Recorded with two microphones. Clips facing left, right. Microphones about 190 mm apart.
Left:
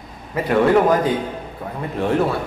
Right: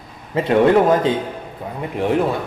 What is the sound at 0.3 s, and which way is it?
A man's voice, 25° right (ahead or behind).